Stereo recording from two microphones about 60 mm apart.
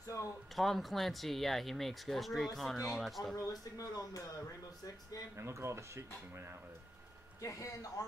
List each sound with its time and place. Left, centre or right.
0.0 s a sound: left
0.6 s speech: centre
3.3 s speech: left
5.3 s speech: right
7.4 s speech: left